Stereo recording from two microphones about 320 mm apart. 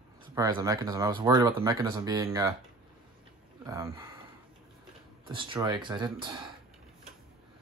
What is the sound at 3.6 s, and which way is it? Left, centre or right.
Speech, centre.